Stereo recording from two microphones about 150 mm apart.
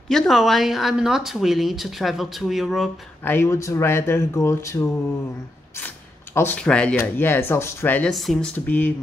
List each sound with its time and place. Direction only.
0.1 s speech: centre (ahead or behind)
3.3 s speech: 15° left (ahead or behind)
6.3 s speech: 10° left (ahead or behind)